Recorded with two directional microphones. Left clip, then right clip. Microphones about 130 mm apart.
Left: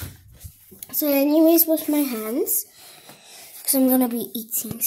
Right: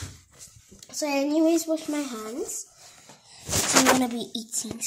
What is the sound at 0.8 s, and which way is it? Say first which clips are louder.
Speech: left 6 dB; 20° left (ahead or behind).